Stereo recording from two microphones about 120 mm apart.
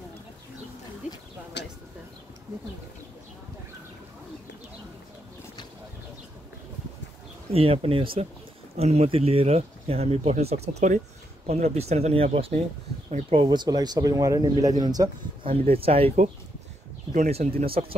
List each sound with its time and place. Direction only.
7.5 s speech: 55° right (ahead or behind)
8.7 s speech: 60° right (ahead or behind)
11.4 s speech: 65° right (ahead or behind)
13.3 s speech: 40° right (ahead or behind)
15.4 s speech: 55° right (ahead or behind)
17.1 s speech: 75° right (ahead or behind); by 17.9 s 55° right (ahead or behind)